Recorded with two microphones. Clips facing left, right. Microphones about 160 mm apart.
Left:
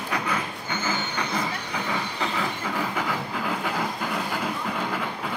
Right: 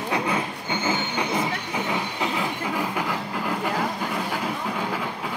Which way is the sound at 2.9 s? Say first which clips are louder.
Right 1 dB; 5° right (ahead or behind).